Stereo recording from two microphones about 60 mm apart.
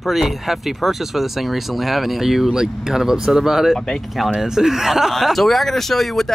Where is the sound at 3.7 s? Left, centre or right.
Centre.